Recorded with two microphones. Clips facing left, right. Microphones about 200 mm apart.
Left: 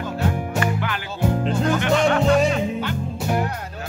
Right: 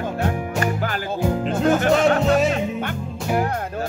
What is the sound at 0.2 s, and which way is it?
Music, 40° right (ahead or behind).